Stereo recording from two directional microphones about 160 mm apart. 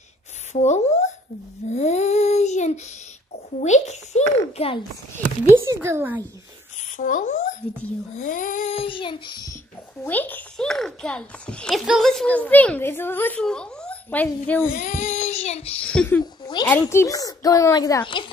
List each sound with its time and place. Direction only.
0.5 s speech: 45° left (ahead or behind)
1.7 s child singing: 45° left (ahead or behind)
3.6 s a child's voice: 45° left (ahead or behind)
5.8 s a child's voice: 15° right (ahead or behind)
7.0 s a child's voice: 55° left (ahead or behind)
8.2 s child singing: 55° left (ahead or behind)
8.7 s a sound: 35° left (ahead or behind)
10.0 s a child's voice: 10° left (ahead or behind)
14.7 s a child's voice: 50° left (ahead or behind)
15.8 s a child's voice: 5° left (ahead or behind)
16.6 s a child's voice: 25° left (ahead or behind)